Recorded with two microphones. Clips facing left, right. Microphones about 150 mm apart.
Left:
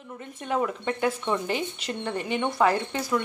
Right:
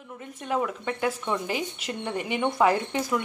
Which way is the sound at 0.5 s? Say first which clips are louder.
Left 1 dB; centre (ahead or behind).